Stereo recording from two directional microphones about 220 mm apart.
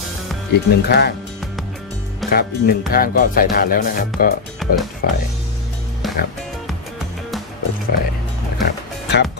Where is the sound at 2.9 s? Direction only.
40° left (ahead or behind).